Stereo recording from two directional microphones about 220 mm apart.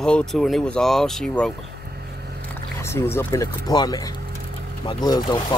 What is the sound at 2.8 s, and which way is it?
Speech, 10° left (ahead or behind).